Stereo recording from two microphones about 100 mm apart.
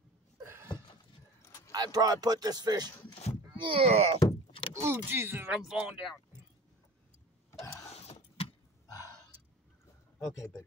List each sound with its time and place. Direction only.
0.4 s a sound: 25° right (ahead or behind)
1.7 s speech: 40° right (ahead or behind)
3.5 s speech: 60° right (ahead or behind); by 4.2 s 85° right
4.5 s vehicle: 65° left (ahead or behind)
4.7 s speech: 25° right (ahead or behind)
5.5 s speech: 10° right (ahead or behind)
7.9 s vehicle: 90° left
10.2 s speech: 35° left (ahead or behind)